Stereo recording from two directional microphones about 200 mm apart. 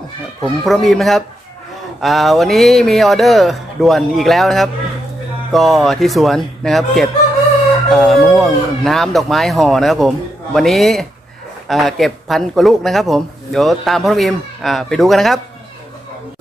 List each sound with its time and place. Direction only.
0.4 s speech: centre (ahead or behind)